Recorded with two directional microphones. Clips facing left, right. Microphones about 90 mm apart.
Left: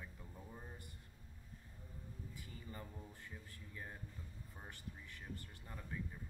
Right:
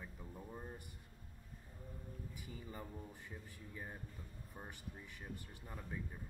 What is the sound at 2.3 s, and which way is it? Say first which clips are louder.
Speech: right 3 dB; 15° right (ahead or behind).